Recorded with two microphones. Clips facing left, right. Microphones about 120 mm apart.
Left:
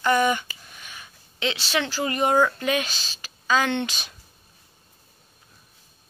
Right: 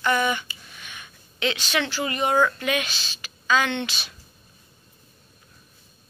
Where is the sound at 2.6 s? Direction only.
35° left (ahead or behind).